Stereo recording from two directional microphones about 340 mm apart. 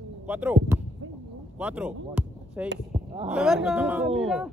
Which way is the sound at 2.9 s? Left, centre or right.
Centre.